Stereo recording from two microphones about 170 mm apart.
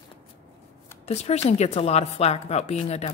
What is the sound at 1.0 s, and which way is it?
Speech, 40° left (ahead or behind).